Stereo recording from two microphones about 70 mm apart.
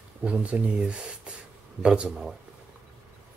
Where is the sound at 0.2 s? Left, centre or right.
Centre.